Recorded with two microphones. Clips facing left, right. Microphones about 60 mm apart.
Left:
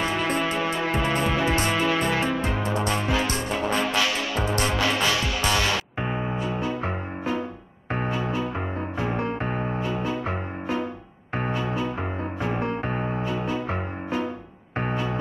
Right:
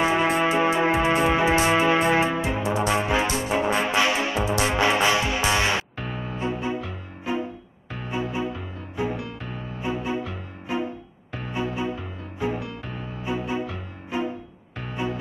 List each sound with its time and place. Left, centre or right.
0.0 s music: centre
5.9 s music: left
7.3 s music: right
9.0 s music: left
10.7 s music: right
12.4 s music: left
14.1 s music: right